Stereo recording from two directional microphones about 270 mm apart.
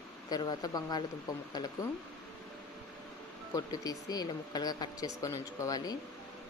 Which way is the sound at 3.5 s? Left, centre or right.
Centre.